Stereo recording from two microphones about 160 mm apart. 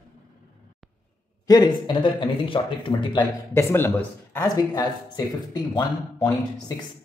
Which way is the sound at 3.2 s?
15° left (ahead or behind).